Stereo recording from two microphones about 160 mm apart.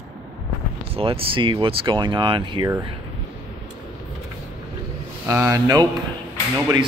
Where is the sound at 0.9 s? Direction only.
35° right (ahead or behind).